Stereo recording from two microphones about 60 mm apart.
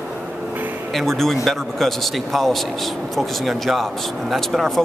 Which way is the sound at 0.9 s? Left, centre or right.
Centre.